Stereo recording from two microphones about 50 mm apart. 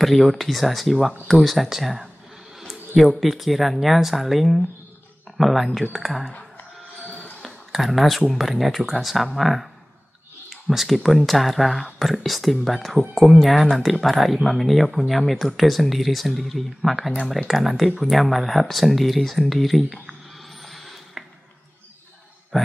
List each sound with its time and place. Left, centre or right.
0.0 s speech: centre
1.5 s speech: centre
3.2 s speech: centre
7.4 s a sound: centre
8.3 s speech: centre
20.6 s a sound: centre